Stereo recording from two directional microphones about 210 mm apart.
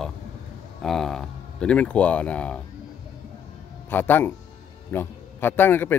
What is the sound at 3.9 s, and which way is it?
A man's voice, 10° left (ahead or behind).